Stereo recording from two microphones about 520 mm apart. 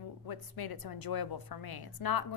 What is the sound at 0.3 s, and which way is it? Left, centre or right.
A woman's voice, left.